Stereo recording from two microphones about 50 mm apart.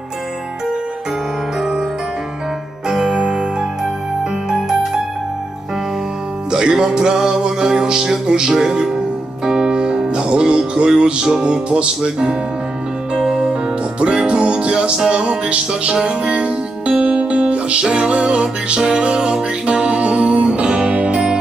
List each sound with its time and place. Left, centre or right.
2.9 s music: centre
4.5 s music: centre
6.5 s music: centre